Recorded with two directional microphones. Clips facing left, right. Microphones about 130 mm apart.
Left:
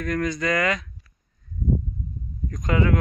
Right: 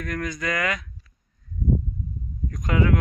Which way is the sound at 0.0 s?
5° right (ahead or behind).